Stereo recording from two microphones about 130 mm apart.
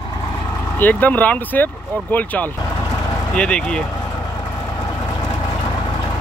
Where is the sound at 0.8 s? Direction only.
15° left (ahead or behind).